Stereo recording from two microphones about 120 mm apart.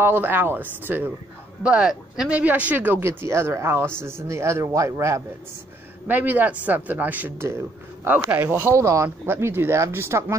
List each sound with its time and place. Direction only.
0.0 s speech: 15° right (ahead or behind)